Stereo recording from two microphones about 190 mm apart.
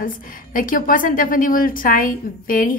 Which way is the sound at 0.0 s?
45° left (ahead or behind).